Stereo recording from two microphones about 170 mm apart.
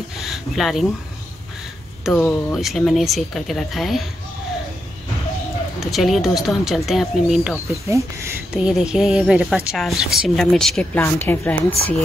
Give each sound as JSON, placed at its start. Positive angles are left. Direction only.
{"t": 0.2, "sound": "a sound", "side_deg": 0}
{"t": 2.0, "sound": "speech", "side_deg": 0}
{"t": 5.8, "sound": "speech", "side_deg": 0}
{"t": 7.8, "sound": "speech", "side_deg": -15}
{"t": 8.6, "sound": "speech", "side_deg": -5}